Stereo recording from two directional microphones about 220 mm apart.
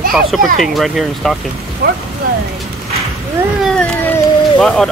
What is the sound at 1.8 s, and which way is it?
Speech, 45° right (ahead or behind).